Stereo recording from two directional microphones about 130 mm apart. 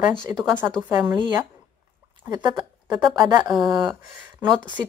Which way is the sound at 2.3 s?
30° right (ahead or behind).